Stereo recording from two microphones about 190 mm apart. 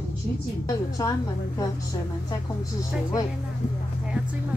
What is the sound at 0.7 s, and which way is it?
Speech, 20° left (ahead or behind).